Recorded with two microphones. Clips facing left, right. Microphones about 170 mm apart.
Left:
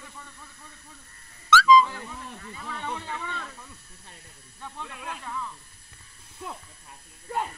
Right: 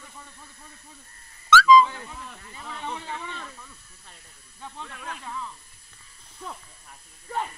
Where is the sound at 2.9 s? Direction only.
20° right (ahead or behind).